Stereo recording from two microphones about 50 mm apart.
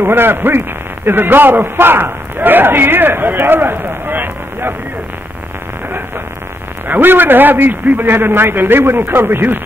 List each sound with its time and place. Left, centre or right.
0.0 s a man's voice: right
6.9 s a man's voice: right